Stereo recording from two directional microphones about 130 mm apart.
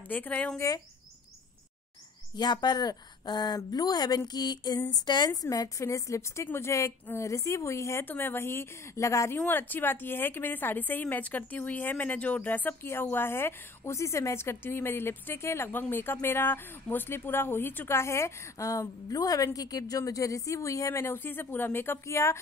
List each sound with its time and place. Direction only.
0.1 s a woman's voice: 15° left (ahead or behind)
0.6 s a woman's voice: 25° left (ahead or behind)
2.3 s a woman's voice: 35° left (ahead or behind)